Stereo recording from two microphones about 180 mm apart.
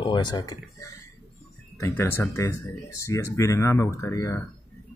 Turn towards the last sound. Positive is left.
turn(degrees=15)  # may be behind; listen again after turning